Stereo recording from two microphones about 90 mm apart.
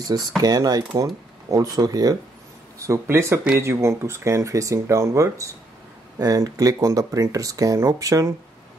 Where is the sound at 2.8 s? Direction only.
30° right (ahead or behind).